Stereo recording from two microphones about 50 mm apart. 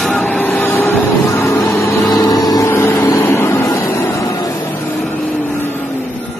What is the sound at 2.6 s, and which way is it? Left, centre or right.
Vehicle, left.